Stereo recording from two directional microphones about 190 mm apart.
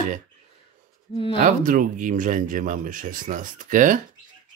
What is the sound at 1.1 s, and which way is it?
Speech, 30° left (ahead or behind).